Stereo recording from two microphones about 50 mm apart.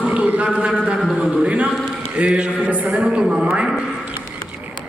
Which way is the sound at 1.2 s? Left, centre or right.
Centre.